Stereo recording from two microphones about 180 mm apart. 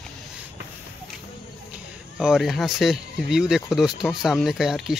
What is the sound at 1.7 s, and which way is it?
Speech, 5° right (ahead or behind).